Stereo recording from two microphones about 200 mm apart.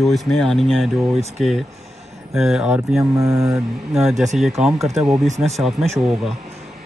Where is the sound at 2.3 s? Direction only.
Centre (ahead or behind).